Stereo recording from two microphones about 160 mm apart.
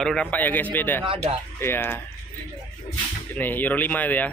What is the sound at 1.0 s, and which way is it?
Speech, 35° right (ahead or behind).